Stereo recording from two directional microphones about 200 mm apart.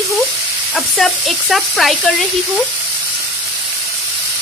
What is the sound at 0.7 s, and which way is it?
Speech, centre (ahead or behind).